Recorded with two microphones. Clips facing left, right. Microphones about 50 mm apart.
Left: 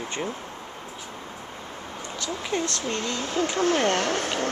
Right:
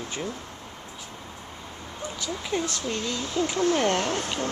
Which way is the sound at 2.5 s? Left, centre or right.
Centre.